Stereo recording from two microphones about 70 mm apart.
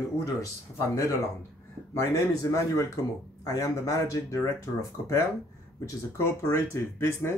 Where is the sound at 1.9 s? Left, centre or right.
Left.